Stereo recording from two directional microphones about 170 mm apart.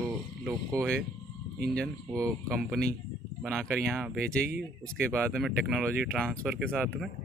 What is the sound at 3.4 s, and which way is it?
Speech, 5° left (ahead or behind).